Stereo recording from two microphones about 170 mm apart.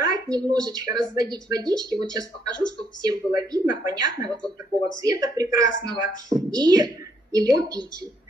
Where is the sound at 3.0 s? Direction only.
25° right (ahead or behind).